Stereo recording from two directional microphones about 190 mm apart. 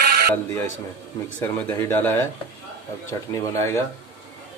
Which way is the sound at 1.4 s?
10° left (ahead or behind).